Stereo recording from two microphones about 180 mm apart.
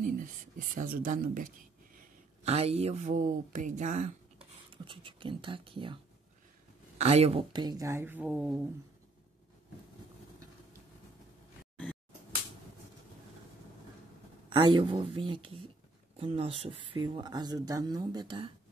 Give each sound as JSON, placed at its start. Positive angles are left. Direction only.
{"t": 0.0, "sound": "speech", "side_deg": -45}
{"t": 2.4, "sound": "speech", "side_deg": -35}
{"t": 4.8, "sound": "speech", "side_deg": -30}
{"t": 7.0, "sound": "speech", "side_deg": -35}
{"t": 14.5, "sound": "speech", "side_deg": -25}